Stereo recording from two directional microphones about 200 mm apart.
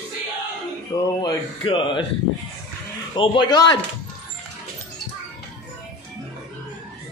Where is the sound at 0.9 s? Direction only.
20° left (ahead or behind).